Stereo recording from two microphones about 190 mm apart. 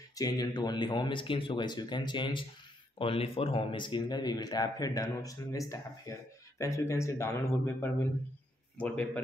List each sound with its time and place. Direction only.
0.1 s speech: 20° left (ahead or behind)